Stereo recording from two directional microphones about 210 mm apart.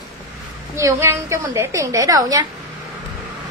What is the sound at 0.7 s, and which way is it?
A woman's voice, 15° right (ahead or behind).